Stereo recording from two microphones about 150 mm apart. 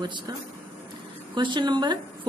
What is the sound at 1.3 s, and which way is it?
Speech, 30° right (ahead or behind).